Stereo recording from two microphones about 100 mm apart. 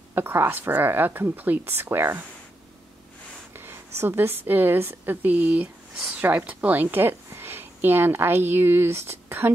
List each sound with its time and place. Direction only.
0.1 s a woman's voice: 20° right (ahead or behind)
3.5 s speech: 25° right (ahead or behind)